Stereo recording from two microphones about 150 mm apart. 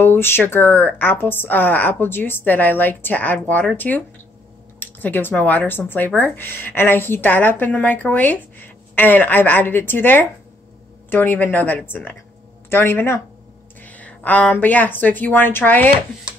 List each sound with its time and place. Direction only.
0.0 s speech: 15° left (ahead or behind)